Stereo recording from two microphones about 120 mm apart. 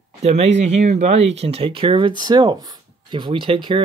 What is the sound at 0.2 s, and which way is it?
Speech, 60° right (ahead or behind).